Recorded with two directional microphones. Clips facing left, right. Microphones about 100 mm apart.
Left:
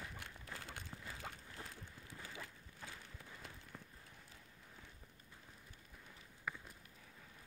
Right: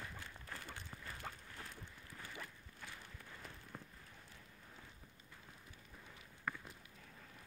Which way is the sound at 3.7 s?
10° right (ahead or behind).